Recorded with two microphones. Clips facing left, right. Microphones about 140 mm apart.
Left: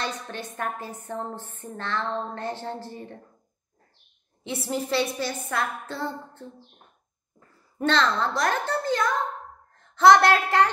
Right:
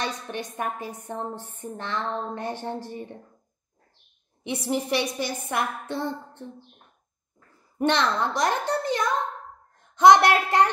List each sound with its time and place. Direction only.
0.0 s a woman's voice: 15° right (ahead or behind)
4.4 s a woman's voice: 15° right (ahead or behind)
7.8 s a woman's voice: 15° right (ahead or behind)